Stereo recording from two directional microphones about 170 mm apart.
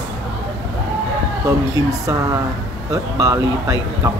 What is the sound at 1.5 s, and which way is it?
Speech, 20° right (ahead or behind).